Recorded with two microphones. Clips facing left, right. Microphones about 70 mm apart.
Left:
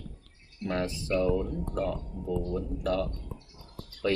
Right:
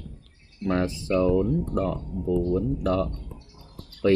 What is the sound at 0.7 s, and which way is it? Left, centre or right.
Speech, right.